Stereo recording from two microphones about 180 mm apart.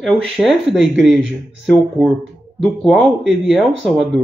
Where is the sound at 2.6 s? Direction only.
Centre (ahead or behind).